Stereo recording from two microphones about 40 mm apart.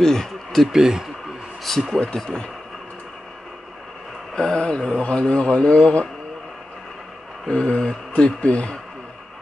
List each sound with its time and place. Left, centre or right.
0.0 s speech: centre
0.7 s speech: centre
1.6 s speech: centre
2.1 s speech: centre
4.4 s a man's voice: left
7.4 s a man's voice: left